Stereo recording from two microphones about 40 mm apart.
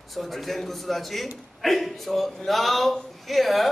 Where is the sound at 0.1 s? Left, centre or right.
Centre.